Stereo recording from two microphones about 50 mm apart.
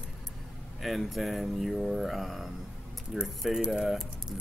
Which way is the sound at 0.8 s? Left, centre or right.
Centre.